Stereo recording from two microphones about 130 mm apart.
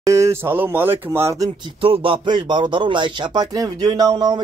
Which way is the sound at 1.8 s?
45° right (ahead or behind).